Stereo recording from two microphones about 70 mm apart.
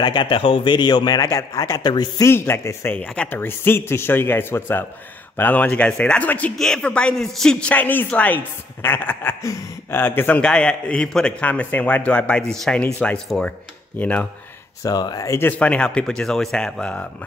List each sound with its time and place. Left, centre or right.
0.2 s a man's voice: left
2.2 s a man's voice: left
3.0 s a man's voice: left
6.6 s a man's voice: centre
7.6 s a man's voice: left
10.4 s a man's voice: centre
14.8 s speech: left
15.5 s a man's voice: centre